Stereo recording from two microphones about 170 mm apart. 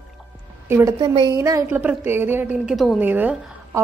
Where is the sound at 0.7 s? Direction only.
15° right (ahead or behind).